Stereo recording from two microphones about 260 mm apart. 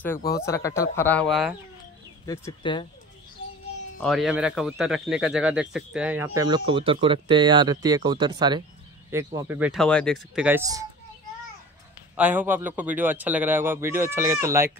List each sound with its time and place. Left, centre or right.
0.4 s speech: centre
2.2 s speech: centre
4.0 s speech: centre
12.2 s speech: centre